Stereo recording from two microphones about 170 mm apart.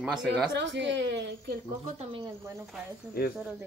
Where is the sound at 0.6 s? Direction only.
90° right.